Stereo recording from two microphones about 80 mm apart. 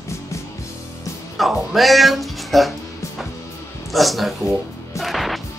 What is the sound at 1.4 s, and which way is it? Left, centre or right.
Speech, centre.